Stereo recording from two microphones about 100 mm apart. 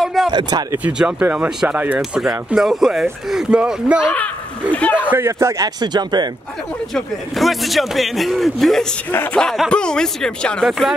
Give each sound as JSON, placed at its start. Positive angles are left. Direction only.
{"t": 0.0, "sound": "a sound", "side_deg": 0}
{"t": 0.3, "sound": "speech", "side_deg": -45}
{"t": 0.8, "sound": "speech", "side_deg": -10}
{"t": 4.1, "sound": "speech", "side_deg": 15}
{"t": 5.1, "sound": "a man's voice", "side_deg": -25}
{"t": 5.8, "sound": "speech", "side_deg": -45}
{"t": 6.9, "sound": "speech", "side_deg": 0}
{"t": 10.7, "sound": "speech", "side_deg": -5}